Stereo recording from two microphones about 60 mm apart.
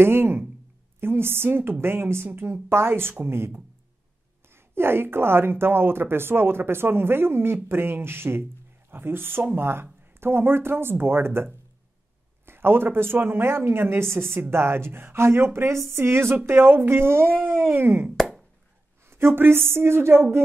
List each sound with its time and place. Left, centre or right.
0.0 s speech: right
18.1 s a sound: centre
19.0 s speech: right